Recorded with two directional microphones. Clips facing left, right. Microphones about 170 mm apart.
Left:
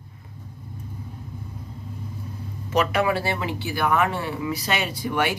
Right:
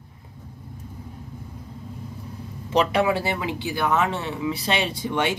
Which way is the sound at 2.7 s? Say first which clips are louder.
Right 1 dB; 30° right (ahead or behind).